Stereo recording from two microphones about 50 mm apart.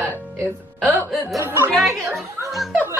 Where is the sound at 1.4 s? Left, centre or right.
Right.